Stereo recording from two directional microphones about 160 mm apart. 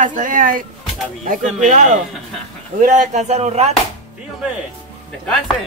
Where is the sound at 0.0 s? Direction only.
55° right (ahead or behind).